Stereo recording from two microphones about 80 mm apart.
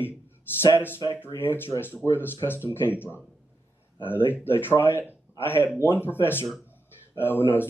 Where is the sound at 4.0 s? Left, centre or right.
Left.